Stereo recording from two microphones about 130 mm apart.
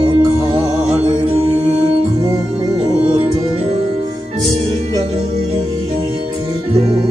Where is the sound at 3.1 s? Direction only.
50° right (ahead or behind).